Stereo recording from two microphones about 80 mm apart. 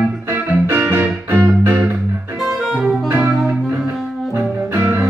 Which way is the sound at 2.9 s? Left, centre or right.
Right.